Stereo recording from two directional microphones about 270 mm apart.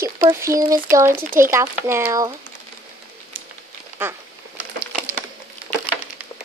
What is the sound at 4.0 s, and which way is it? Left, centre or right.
Speech, centre.